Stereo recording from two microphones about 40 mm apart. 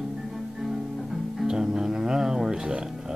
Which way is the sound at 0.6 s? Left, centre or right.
Centre.